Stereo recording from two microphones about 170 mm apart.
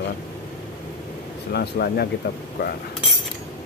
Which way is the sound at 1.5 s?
70° left (ahead or behind).